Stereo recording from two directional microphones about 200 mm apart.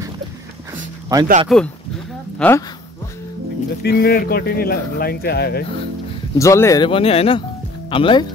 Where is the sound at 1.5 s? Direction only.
Centre (ahead or behind).